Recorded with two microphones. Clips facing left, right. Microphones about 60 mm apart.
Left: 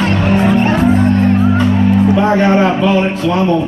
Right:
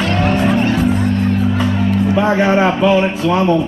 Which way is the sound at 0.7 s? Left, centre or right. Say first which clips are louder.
Left 4 dB; left.